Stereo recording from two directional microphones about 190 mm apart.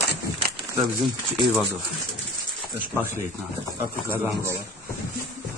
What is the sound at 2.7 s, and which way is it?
A man's voice, 10° right (ahead or behind).